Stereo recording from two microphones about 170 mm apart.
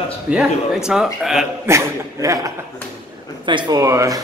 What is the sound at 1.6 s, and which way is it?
A man's voice, 15° right (ahead or behind).